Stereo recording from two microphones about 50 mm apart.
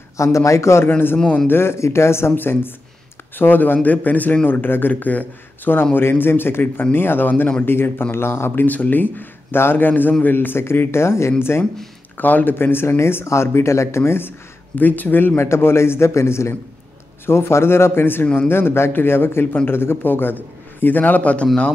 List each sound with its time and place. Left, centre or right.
0.2 s a man's voice: left
0.8 s speech: left
1.5 s speech: left
2.3 s a man's voice: left
5.9 s speech: left
12.2 s speech: left
14.8 s a man's voice: left
15.4 s speech: left